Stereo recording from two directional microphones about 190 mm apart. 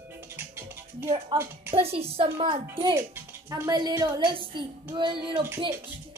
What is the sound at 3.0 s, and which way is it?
A woman's voice, 15° right (ahead or behind).